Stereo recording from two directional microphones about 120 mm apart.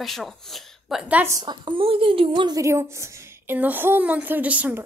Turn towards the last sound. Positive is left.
turn(degrees=-15)  # may be behind; listen again after turning